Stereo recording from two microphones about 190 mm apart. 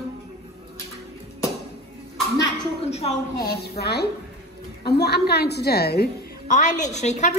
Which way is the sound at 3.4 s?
55° left (ahead or behind).